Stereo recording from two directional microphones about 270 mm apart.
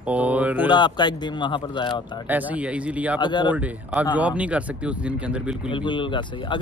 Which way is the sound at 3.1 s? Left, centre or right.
Centre.